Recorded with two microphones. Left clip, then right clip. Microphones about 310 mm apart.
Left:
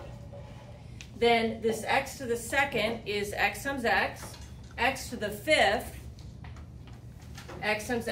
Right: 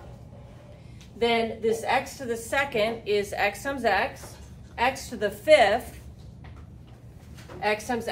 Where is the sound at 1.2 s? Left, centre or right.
Centre.